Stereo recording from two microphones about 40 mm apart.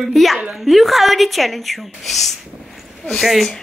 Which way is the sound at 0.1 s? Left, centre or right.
Centre.